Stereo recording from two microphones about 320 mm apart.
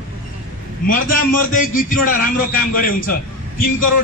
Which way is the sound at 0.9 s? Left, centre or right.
Left.